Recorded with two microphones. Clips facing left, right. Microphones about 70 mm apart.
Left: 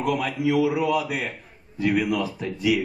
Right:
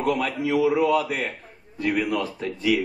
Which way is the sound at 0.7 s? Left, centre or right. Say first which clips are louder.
Right 2 dB; centre.